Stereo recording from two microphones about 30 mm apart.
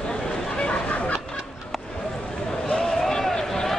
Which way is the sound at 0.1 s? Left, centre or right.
Left.